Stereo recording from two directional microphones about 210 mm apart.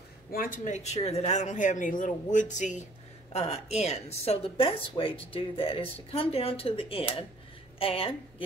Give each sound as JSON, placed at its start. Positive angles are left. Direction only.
{"t": 0.3, "sound": "a woman's voice", "side_deg": 40}